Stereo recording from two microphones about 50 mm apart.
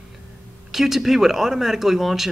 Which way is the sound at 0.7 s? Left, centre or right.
Centre.